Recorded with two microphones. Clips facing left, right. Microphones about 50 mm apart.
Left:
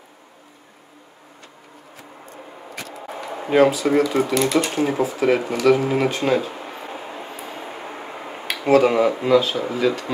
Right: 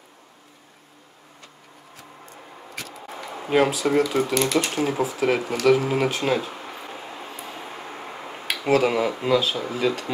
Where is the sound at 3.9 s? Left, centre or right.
Centre.